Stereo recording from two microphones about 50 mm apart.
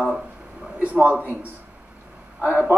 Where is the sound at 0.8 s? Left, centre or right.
Right.